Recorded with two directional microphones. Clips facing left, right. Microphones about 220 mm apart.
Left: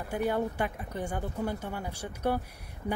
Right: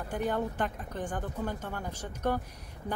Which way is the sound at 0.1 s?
10° left (ahead or behind).